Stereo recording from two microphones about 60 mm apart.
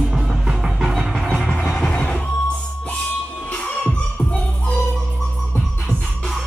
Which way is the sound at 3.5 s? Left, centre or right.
Left.